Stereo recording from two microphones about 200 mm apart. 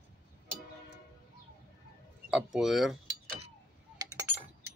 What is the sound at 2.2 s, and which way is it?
Speech, centre (ahead or behind).